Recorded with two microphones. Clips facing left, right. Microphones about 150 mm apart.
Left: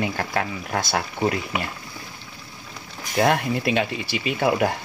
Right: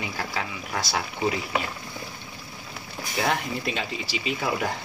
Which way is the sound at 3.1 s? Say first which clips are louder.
Left 6 dB; 60° left (ahead or behind).